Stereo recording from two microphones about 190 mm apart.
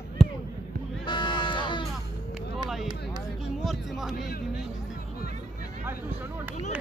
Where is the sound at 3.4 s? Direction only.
Centre (ahead or behind).